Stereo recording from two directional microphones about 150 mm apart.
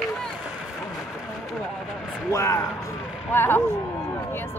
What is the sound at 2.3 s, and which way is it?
Speech, 20° left (ahead or behind).